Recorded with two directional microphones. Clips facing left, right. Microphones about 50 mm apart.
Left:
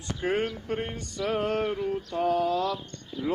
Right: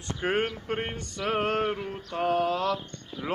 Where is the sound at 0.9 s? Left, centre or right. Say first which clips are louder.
Even; right.